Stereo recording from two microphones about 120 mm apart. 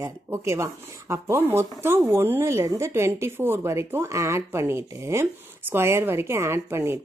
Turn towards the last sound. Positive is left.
turn(degrees=-20)  # may be behind; listen again after turning